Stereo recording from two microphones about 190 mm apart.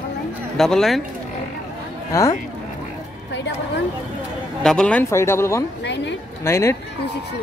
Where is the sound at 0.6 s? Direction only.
Centre (ahead or behind).